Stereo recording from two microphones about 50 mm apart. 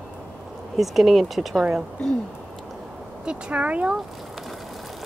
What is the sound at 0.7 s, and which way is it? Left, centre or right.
Speech, centre.